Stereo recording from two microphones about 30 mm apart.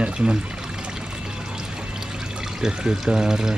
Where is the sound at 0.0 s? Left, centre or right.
Right.